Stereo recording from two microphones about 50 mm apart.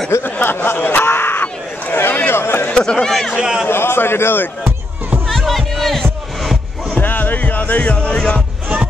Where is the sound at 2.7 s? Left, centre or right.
Centre.